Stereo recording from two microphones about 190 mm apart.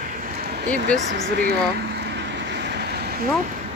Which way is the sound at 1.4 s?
60° right (ahead or behind).